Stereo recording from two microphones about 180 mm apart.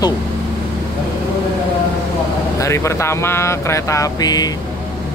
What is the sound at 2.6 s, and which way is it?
Speech, 15° left (ahead or behind).